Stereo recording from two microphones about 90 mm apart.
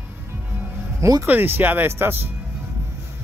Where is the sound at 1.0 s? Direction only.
35° right (ahead or behind).